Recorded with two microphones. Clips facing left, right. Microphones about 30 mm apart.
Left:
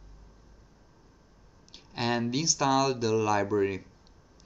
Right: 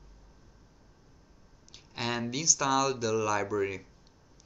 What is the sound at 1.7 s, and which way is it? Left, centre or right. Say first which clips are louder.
Speech: left 4 dB; centre.